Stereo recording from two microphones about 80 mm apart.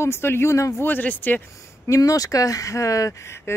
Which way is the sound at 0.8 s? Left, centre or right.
Left.